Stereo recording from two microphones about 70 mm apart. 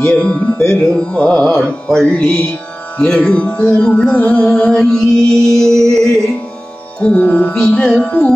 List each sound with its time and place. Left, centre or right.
0.0 s music: centre
7.0 s music: centre
7.5 s music: centre